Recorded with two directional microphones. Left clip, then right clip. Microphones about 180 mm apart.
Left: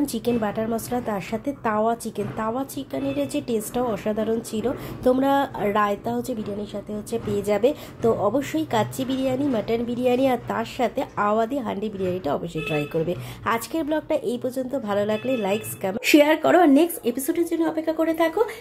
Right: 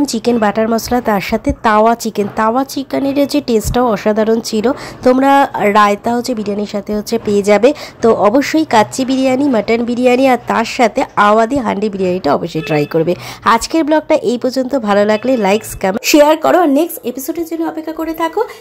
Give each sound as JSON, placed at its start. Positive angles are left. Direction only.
{"t": 0.0, "sound": "a woman's voice", "side_deg": -30}
{"t": 5.0, "sound": "a woman's voice", "side_deg": -30}
{"t": 6.6, "sound": "speech", "side_deg": -45}
{"t": 16.1, "sound": "a woman's voice", "side_deg": -25}